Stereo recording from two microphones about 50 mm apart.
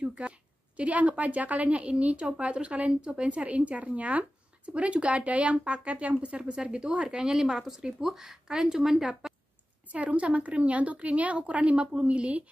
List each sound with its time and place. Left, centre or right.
0.0 s a woman's voice: right
9.8 s a woman's voice: right